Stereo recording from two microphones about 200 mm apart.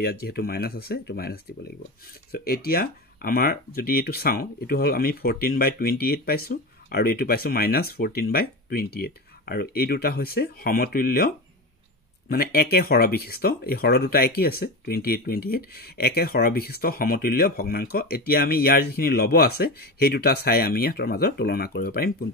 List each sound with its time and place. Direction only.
0.0 s speech: 50° left (ahead or behind)